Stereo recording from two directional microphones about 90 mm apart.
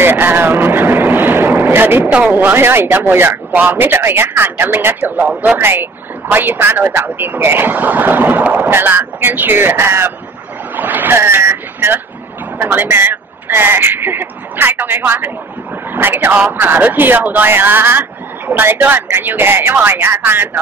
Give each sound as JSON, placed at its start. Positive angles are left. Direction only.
{"t": 0.0, "sound": "a man's voice", "side_deg": -25}